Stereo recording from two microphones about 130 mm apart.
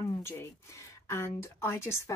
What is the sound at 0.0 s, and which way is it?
Speech, 20° left (ahead or behind).